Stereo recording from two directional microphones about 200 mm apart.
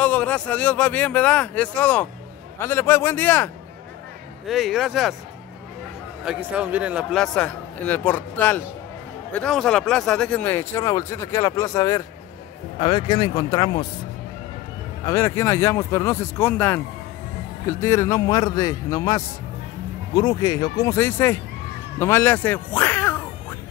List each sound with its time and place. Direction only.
0.0 s speech: 5° left (ahead or behind)
4.5 s a man's voice: centre (ahead or behind)
6.2 s a man's voice: 5° right (ahead or behind); by 13.8 s 20° left (ahead or behind)
15.0 s speech: 15° left (ahead or behind)